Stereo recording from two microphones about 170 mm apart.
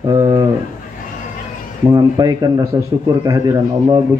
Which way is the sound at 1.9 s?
20° right (ahead or behind).